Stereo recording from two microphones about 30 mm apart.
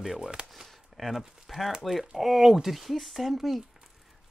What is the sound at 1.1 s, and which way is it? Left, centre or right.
Speech, centre.